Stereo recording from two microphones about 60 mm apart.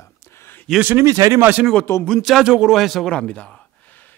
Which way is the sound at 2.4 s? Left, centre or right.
Centre.